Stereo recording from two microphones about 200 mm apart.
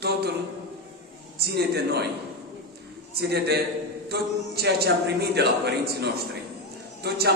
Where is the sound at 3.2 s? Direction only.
55° right (ahead or behind).